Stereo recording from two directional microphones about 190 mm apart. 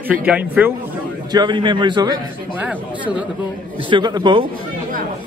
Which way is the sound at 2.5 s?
10° right (ahead or behind).